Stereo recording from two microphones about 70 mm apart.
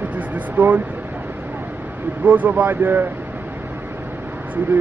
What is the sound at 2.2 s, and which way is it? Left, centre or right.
Speech, right.